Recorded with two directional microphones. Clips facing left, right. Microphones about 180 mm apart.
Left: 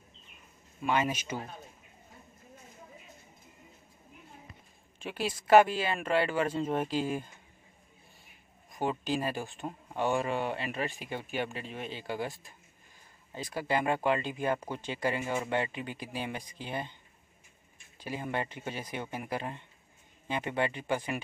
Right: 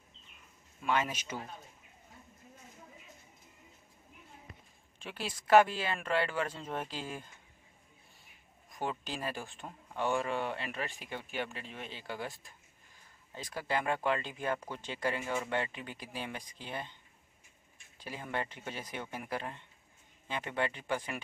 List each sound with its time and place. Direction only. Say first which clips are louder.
0.8 s speech: left 3 dB; 10° left (ahead or behind)
4.9 s speech: left 6 dB; 10° left (ahead or behind)
8.7 s speech: left 7 dB; 5° left (ahead or behind)
9.6 s speech: left 3 dB; 20° left (ahead or behind)
13.6 s speech: left 4 dB; 10° left (ahead or behind)
18.0 s speech: left 4 dB; 10° left (ahead or behind)